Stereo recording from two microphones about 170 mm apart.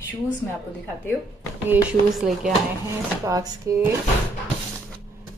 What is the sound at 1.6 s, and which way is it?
Speech, 5° right (ahead or behind).